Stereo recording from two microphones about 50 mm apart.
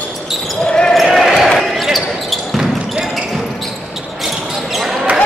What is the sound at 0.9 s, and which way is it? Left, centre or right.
Basketball bounce, centre.